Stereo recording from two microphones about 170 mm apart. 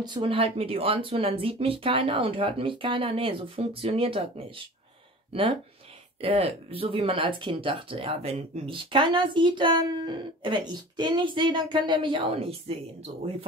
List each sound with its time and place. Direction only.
0.0 s speech: 30° right (ahead or behind)